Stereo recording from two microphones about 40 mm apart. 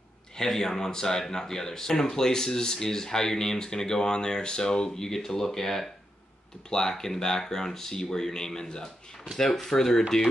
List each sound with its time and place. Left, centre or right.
0.4 s speech: centre